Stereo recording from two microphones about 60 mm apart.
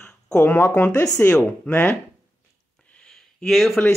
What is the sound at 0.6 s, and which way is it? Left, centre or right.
Speech, left.